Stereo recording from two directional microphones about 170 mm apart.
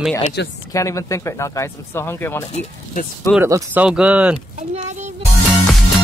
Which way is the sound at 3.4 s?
15° right (ahead or behind).